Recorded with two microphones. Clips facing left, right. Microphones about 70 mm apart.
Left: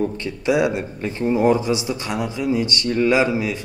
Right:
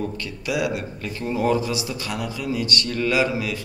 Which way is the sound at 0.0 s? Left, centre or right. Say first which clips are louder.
Left 6 dB; left.